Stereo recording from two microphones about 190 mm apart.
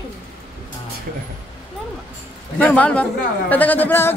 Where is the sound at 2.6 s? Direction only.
10° left (ahead or behind).